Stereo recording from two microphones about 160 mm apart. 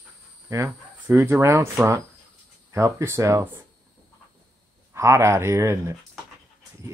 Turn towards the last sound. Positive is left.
turn(degrees=-15)  # may be behind; listen again after turning